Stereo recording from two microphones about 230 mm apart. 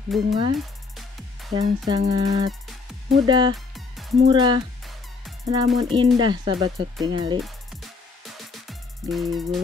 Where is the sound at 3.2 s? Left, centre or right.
Centre.